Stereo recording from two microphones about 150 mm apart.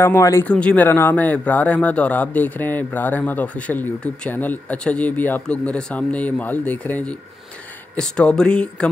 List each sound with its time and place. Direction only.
0.0 s speech: 15° left (ahead or behind)